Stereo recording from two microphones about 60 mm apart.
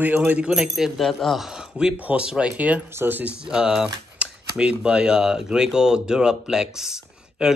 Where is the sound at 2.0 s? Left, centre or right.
Right.